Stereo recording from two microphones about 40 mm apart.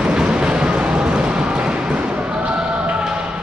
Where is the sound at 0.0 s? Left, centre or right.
Right.